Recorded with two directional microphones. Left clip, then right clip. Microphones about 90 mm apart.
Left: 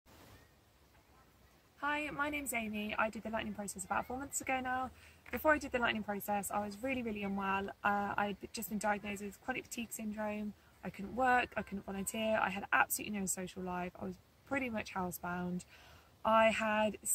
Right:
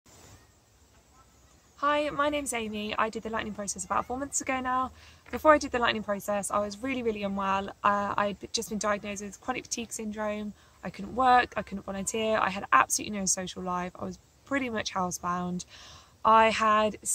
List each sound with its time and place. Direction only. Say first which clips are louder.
1.8 s a woman's voice: right 10 dB; 35° right (ahead or behind)